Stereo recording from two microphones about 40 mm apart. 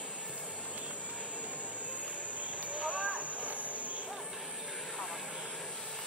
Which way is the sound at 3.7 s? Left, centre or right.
Right.